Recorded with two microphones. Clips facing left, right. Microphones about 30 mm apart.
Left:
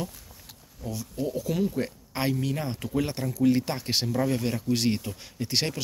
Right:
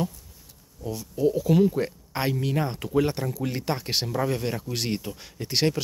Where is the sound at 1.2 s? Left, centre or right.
Centre.